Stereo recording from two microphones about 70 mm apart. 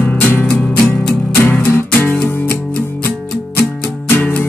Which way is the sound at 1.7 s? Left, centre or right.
Left.